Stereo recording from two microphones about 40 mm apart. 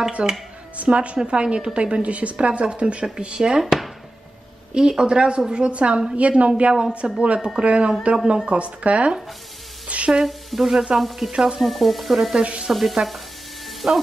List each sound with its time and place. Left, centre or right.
0.2 s a woman's voice: right
3.4 s a woman's voice: centre; by 9.2 s right
9.8 s a sound: right
10.2 s frying: centre
11.3 s a woman's voice: centre
11.6 s frying: centre
12.4 s a woman's voice: right
13.7 s music: centre